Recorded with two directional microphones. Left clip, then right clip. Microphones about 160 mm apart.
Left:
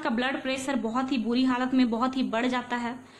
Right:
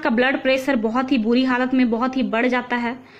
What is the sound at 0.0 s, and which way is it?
A woman's voice, 20° right (ahead or behind).